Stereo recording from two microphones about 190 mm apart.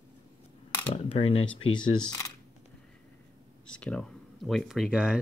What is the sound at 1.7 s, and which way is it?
Speech, 25° left (ahead or behind).